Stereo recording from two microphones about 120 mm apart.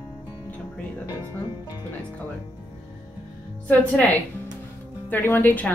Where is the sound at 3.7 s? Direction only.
15° left (ahead or behind).